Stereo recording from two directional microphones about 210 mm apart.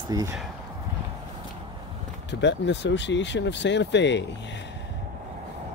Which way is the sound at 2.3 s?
55° left (ahead or behind).